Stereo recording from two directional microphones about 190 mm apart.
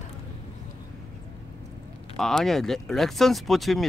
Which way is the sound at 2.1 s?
Centre (ahead or behind).